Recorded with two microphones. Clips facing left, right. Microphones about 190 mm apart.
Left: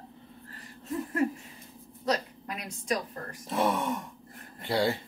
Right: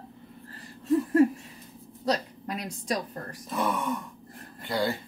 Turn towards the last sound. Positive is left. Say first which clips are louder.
# left 1 dB
turn(degrees=25)  # may be behind; listen again after turning